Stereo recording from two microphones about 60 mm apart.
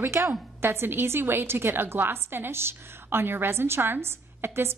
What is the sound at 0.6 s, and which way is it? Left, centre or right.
A woman's voice, right.